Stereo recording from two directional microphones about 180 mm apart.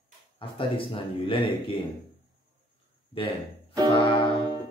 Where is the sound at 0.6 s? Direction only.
30° left (ahead or behind).